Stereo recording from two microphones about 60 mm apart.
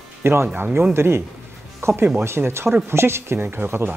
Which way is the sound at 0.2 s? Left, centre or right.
Right.